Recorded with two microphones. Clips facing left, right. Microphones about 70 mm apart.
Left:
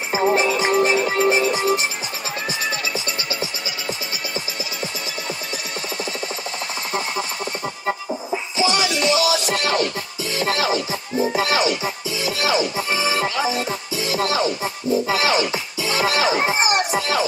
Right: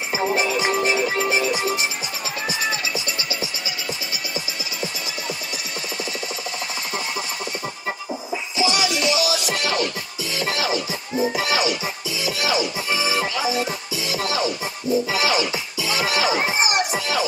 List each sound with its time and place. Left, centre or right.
0.1 s music: left
8.5 s music: left